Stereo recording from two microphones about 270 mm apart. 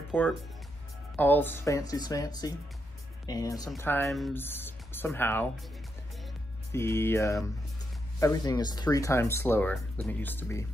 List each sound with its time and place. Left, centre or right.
0.1 s speech: centre
6.7 s speech: centre